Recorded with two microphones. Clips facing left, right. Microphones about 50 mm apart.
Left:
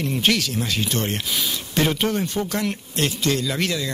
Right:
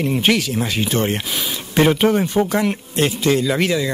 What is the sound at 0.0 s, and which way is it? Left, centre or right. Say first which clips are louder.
Speech: right 4 dB; centre.